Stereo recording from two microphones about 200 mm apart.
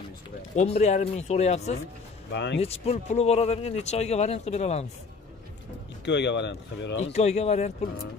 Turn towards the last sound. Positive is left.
turn(degrees=30)  # may be behind; listen again after turning